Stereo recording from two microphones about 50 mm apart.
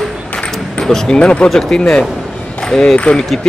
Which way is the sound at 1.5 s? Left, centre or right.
Centre.